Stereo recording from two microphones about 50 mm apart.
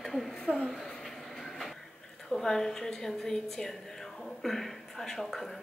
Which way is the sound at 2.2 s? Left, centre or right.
Centre.